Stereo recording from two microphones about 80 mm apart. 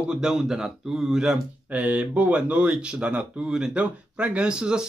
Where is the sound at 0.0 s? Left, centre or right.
Centre.